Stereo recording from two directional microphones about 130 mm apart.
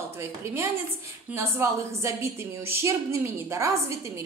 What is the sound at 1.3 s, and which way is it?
A woman's voice, 20° right (ahead or behind).